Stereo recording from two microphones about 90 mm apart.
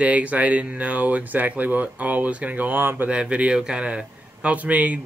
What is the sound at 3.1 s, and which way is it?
Speech, 10° right (ahead or behind).